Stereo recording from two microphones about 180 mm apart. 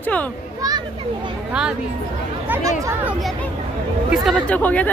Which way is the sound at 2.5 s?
10° right (ahead or behind).